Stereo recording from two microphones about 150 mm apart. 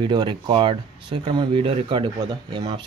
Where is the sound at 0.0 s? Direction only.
30° right (ahead or behind).